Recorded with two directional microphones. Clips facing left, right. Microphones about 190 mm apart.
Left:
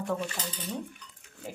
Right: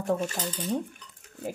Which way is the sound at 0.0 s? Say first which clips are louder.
Right 4 dB; 45° right (ahead or behind).